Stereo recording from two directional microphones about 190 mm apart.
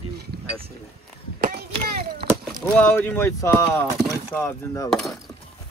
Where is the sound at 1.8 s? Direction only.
50° right (ahead or behind).